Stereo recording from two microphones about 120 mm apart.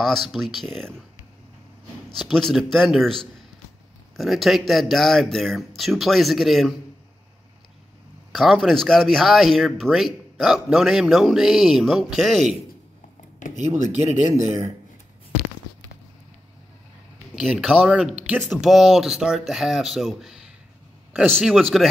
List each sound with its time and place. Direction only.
0.0 s speech: centre (ahead or behind)
2.0 s speech: 5° left (ahead or behind)
8.3 s speech: centre (ahead or behind)
14.0 s speech: 75° right (ahead or behind)
17.4 s speech: centre (ahead or behind)